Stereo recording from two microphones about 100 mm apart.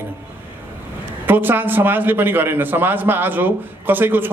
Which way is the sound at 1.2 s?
20° right (ahead or behind).